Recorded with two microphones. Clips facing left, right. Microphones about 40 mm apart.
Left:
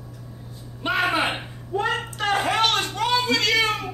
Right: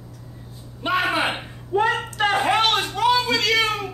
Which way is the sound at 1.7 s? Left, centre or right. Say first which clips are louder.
Right 5 dB; right.